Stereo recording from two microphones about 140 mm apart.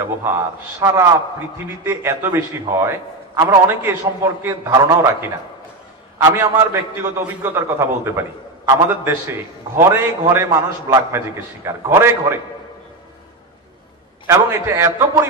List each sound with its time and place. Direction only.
0.0 s a man's voice: 15° right (ahead or behind)
6.3 s a man's voice: 15° right (ahead or behind)
14.2 s a man's voice: 20° right (ahead or behind)